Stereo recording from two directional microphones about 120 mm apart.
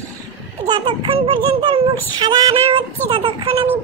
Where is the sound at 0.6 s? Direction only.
40° right (ahead or behind).